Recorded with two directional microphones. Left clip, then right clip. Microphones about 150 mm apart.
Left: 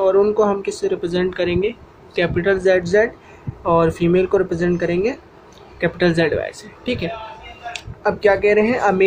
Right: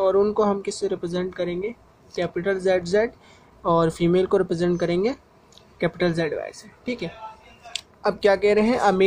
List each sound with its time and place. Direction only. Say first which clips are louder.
0.0 s speech: left 5 dB; 55° right (ahead or behind); by 7.1 s 40° right (ahead or behind)
7.7 s speech: left 4 dB; 60° right (ahead or behind)